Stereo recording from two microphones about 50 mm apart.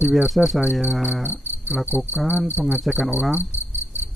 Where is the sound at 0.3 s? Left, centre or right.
Centre.